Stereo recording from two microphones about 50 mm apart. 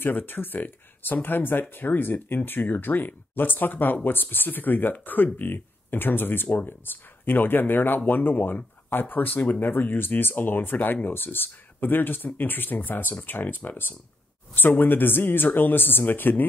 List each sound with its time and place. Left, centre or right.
0.0 s speech: left